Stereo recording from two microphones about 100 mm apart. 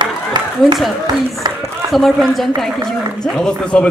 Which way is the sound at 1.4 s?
45° right (ahead or behind).